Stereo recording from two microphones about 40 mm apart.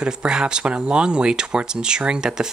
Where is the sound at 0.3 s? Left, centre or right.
Centre.